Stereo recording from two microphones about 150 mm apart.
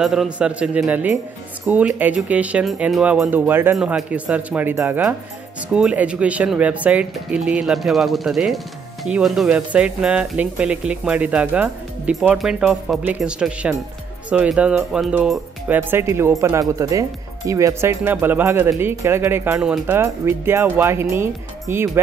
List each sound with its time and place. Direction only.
0.0 s speech: centre (ahead or behind)
15.7 s speech: 15° right (ahead or behind)